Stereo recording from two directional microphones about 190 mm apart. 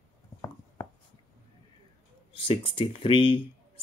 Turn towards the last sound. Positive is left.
turn(degrees=30)  # may be behind; listen again after turning